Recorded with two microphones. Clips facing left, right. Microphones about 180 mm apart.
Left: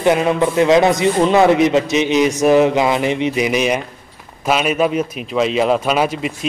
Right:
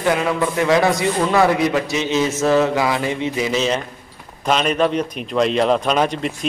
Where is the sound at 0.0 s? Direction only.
20° left (ahead or behind).